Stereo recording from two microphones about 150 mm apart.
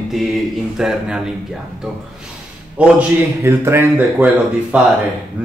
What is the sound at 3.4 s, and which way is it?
Speech, 15° right (ahead or behind).